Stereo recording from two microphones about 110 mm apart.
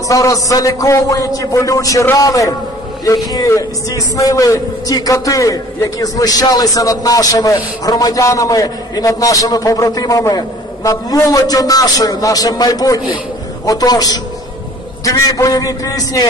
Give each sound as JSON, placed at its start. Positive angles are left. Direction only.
{"t": 0.1, "sound": "a man's voice", "side_deg": 30}